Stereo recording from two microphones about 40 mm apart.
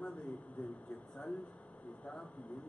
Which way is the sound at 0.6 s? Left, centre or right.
Left.